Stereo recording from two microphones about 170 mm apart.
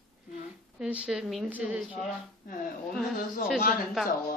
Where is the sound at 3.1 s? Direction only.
55° left (ahead or behind).